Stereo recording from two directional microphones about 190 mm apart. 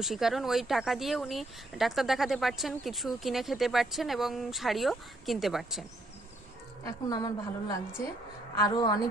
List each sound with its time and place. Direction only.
0.0 s speech: centre (ahead or behind)
6.8 s a woman's voice: 20° left (ahead or behind)